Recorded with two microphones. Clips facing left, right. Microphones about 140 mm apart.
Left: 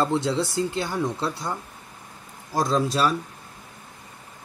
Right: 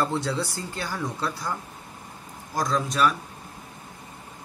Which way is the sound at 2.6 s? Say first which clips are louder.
Left 2 dB; 30° left (ahead or behind).